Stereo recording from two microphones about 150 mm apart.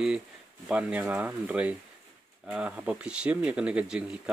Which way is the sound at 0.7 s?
5° right (ahead or behind).